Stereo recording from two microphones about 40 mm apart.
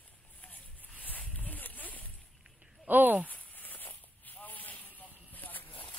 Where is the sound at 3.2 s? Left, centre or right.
Left.